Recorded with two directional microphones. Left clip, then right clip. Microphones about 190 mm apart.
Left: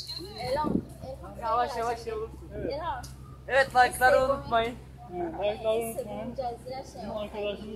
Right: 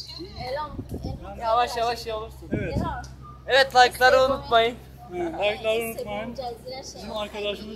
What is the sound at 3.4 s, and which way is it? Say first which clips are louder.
A man's voice: right 5 dB; 35° right (ahead or behind).